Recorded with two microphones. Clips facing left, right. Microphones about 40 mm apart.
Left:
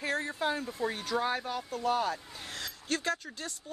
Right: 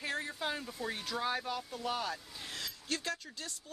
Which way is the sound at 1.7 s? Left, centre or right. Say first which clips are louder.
Left 7 dB; left.